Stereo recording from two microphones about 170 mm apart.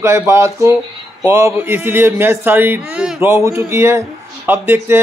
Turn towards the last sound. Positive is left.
turn(degrees=-15)  # may be behind; listen again after turning